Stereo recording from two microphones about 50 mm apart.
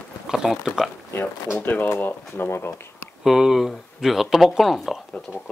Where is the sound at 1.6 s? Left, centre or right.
Left.